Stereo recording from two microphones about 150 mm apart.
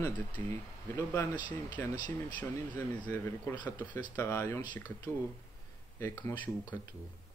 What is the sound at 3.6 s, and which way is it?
Speech, 30° left (ahead or behind).